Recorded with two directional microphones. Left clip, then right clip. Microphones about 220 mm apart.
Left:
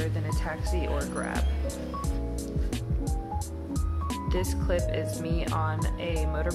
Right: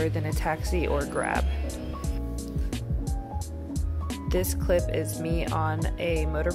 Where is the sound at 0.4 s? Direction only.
30° right (ahead or behind).